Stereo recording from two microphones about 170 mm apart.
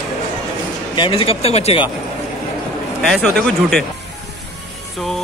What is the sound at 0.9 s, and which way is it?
Speech, 30° left (ahead or behind).